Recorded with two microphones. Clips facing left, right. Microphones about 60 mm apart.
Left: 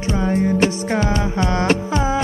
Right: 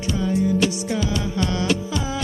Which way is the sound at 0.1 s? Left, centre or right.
Left.